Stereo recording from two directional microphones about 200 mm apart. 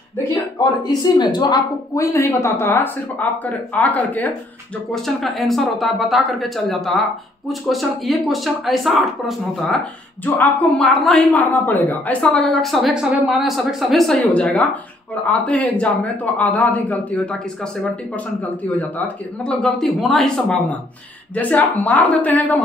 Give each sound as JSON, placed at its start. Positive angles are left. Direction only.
{"t": 0.8, "sound": "a woman's voice", "side_deg": 20}